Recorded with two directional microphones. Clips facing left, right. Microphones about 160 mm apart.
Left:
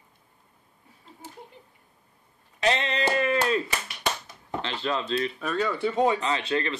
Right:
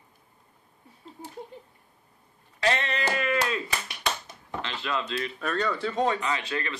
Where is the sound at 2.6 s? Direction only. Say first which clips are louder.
Left 2 dB; 20° left (ahead or behind).